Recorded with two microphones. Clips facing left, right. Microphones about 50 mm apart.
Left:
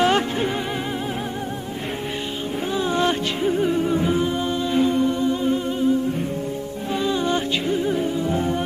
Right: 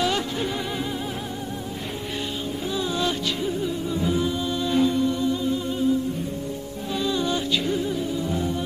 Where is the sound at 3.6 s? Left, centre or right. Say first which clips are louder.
Left 6 dB; left.